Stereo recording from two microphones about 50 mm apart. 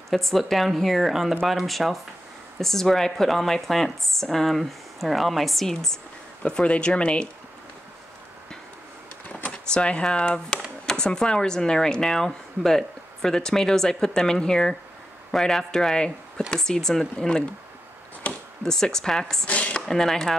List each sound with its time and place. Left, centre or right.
0.1 s speech: centre
6.4 s speech: left
9.5 s speech: centre
18.6 s speech: centre
19.4 s a sound: left
19.9 s speech: centre